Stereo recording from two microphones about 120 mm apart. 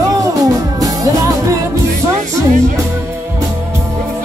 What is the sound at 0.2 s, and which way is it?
Music, 30° right (ahead or behind).